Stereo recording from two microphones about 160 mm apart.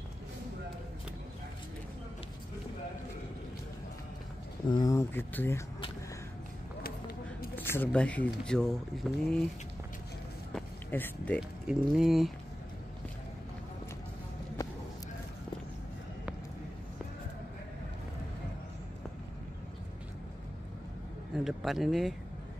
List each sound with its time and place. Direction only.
4.6 s speech: 25° left (ahead or behind)
7.5 s speech: 10° left (ahead or behind)
10.5 s a sound: 10° left (ahead or behind)
11.6 s speech: 5° right (ahead or behind)
21.5 s speech: centre (ahead or behind)